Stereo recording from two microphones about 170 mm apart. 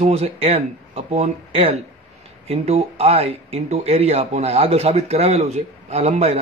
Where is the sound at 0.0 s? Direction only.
40° right (ahead or behind).